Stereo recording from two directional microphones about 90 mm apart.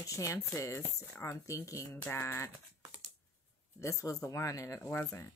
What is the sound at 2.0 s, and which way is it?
Typing, 25° left (ahead or behind).